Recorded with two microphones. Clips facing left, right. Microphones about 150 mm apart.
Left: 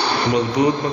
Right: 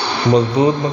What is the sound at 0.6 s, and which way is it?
Speech, 30° right (ahead or behind).